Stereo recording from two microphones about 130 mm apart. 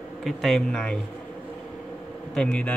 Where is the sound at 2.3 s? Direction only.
10° left (ahead or behind).